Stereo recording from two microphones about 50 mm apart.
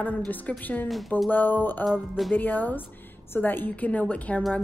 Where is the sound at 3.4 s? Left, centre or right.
Left.